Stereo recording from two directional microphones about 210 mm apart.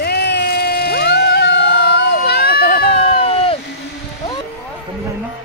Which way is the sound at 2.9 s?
30° left (ahead or behind).